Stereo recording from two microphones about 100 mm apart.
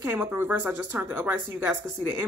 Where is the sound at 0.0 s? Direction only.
20° right (ahead or behind).